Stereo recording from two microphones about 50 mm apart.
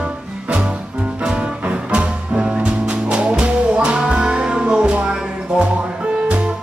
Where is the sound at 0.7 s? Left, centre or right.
Right.